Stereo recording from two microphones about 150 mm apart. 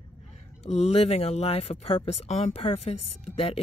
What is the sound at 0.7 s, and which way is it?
Speech, 45° left (ahead or behind).